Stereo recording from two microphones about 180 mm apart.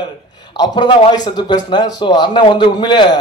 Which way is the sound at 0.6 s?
25° left (ahead or behind).